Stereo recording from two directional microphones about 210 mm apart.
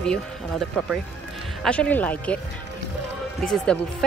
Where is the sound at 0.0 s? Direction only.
5° left (ahead or behind).